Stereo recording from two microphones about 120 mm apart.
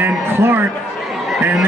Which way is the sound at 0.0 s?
20° right (ahead or behind).